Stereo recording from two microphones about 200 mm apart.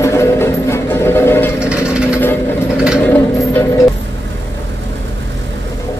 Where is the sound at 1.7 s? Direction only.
5° right (ahead or behind).